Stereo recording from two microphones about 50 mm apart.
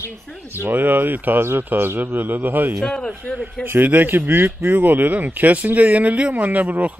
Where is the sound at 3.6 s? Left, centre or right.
Right.